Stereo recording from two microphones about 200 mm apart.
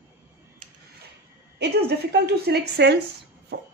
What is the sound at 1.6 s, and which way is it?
A woman's voice, 55° right (ahead or behind).